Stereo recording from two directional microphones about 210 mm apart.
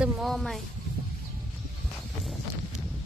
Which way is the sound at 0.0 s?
Centre (ahead or behind).